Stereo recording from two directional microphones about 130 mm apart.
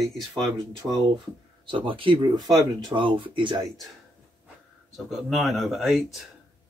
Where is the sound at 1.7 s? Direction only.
40° right (ahead or behind).